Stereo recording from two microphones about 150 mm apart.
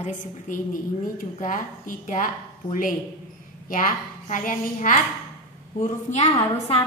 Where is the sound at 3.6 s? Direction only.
65° left (ahead or behind).